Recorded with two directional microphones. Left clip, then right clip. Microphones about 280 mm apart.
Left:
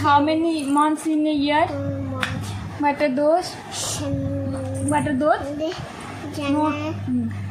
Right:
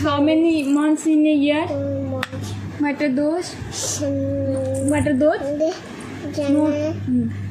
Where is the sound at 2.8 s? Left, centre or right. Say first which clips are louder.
Left 1 dB; centre.